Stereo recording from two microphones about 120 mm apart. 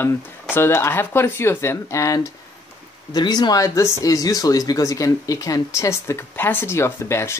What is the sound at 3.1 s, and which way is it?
Speech, 35° left (ahead or behind).